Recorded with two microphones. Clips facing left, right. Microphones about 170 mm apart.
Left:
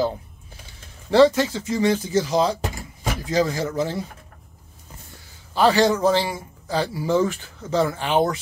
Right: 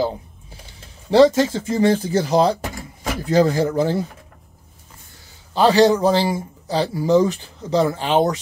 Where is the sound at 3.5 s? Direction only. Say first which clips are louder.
Right 6 dB; 30° right (ahead or behind).